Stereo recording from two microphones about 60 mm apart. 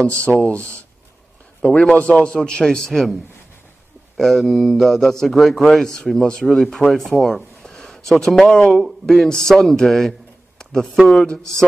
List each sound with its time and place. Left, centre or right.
0.4 s speech: left; by 3.2 s centre
4.2 s mantra: centre
5.2 s speech: centre